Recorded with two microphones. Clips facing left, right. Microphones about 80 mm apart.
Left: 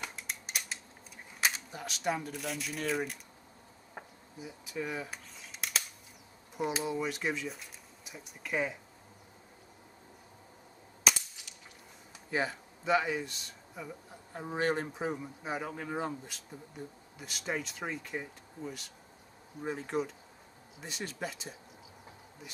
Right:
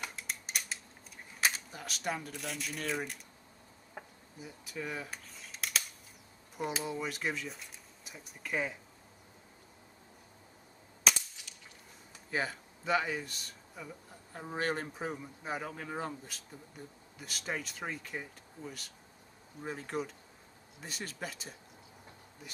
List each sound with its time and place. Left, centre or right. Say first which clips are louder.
0.0 s scissors: even; centre
1.4 s speech: even; centre
4.4 s speech: left 3 dB; centre
11.1 s cap gun: left 1 dB; centre
12.3 s speech: left 2 dB; centre